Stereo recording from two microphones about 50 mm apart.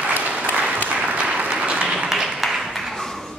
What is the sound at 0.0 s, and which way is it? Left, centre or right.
Applause, right.